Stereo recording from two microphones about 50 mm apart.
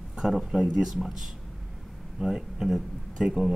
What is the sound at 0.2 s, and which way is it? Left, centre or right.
Speech, centre.